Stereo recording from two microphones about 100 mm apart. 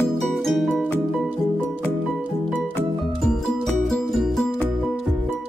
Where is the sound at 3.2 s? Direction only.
Centre (ahead or behind).